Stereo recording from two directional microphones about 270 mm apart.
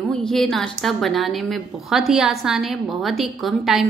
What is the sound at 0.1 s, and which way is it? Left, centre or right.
A woman's voice, centre.